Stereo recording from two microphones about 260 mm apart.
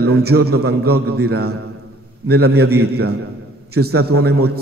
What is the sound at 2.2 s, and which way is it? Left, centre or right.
Speech, right.